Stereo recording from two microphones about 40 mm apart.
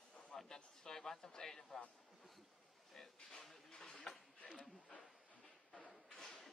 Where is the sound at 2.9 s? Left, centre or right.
Centre.